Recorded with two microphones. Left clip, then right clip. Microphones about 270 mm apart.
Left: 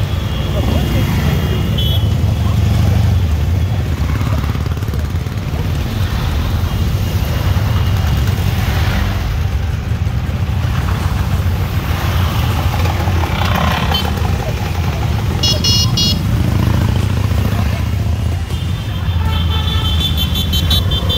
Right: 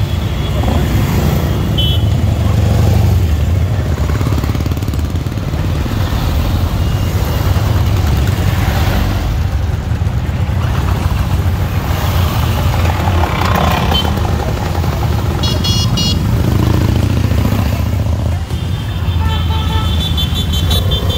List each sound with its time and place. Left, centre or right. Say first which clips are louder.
13.5 s vehicle: right 1 dB; right
15.6 s vehicle: left 1 dB; centre